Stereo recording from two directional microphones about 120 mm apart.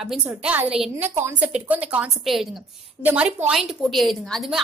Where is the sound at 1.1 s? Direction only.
20° right (ahead or behind).